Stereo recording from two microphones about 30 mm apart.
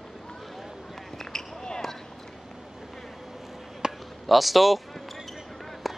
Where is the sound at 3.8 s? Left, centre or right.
Right.